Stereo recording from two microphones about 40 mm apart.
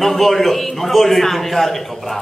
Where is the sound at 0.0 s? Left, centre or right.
Centre.